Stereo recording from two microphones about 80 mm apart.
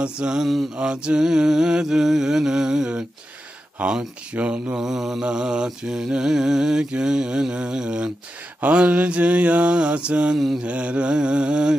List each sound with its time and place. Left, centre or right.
0.0 s mantra: centre